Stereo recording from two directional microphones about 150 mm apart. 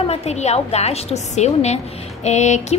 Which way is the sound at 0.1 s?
45° left (ahead or behind).